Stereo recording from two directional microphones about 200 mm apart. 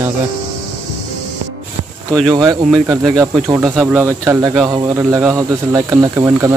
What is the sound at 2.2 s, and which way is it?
Speech, 20° right (ahead or behind).